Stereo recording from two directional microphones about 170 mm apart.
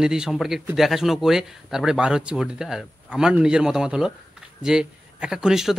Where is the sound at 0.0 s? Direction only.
5° right (ahead or behind).